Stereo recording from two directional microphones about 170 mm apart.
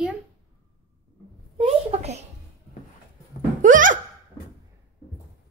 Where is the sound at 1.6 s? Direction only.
35° right (ahead or behind).